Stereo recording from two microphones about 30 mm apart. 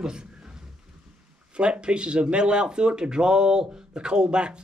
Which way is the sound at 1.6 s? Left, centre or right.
Right.